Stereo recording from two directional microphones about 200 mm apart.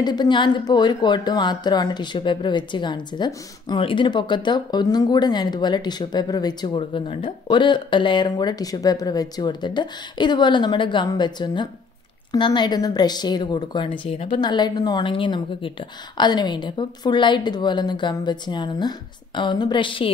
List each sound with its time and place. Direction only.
0.0 s a woman's voice: 20° left (ahead or behind)